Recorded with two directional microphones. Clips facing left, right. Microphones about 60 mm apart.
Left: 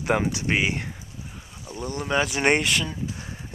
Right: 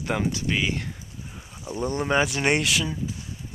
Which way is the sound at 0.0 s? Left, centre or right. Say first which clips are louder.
Left 3 dB; centre.